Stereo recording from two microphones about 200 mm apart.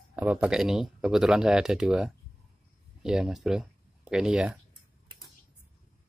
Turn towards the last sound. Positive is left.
turn(degrees=-5)  # may be behind; listen again after turning